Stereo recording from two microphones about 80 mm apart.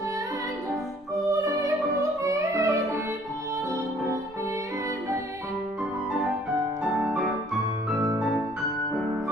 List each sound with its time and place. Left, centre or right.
1.1 s music: right
7.1 s music: centre